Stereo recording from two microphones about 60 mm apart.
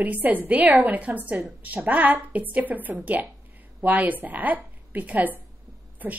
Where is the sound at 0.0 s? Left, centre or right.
Right.